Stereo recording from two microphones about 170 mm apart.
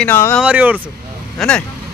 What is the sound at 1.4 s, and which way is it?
Speech, centre (ahead or behind).